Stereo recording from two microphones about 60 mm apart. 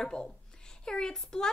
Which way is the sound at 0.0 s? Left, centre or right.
Centre.